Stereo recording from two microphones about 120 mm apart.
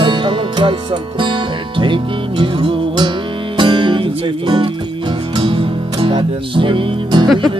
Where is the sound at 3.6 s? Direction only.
40° right (ahead or behind).